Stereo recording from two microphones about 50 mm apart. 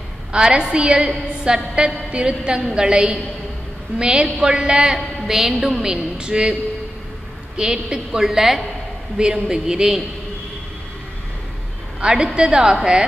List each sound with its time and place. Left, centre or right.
0.3 s a woman's voice: centre
4.9 s a woman's voice: centre
7.5 s a woman's voice: centre
12.0 s a woman's voice: centre